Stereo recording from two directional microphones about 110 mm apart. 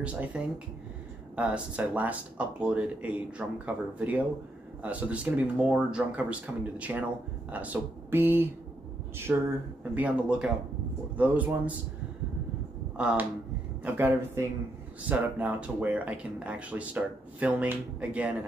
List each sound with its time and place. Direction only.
0.0 s speech: 10° right (ahead or behind)
12.9 s speech: 10° right (ahead or behind)